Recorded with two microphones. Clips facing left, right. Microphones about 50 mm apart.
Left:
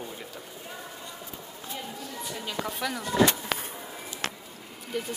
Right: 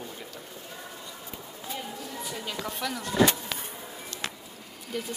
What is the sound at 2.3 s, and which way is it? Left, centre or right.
Speech, centre.